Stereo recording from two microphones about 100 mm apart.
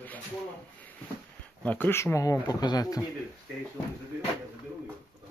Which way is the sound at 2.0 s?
30° left (ahead or behind).